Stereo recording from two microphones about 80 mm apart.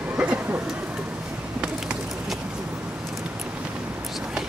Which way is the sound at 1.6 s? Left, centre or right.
Centre.